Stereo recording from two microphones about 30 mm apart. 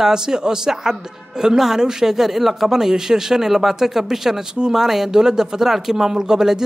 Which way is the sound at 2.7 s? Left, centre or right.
Centre.